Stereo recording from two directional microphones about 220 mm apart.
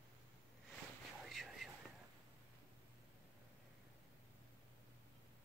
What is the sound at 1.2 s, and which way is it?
Whispering, centre (ahead or behind).